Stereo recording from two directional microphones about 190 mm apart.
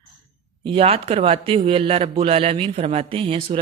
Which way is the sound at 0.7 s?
30° right (ahead or behind).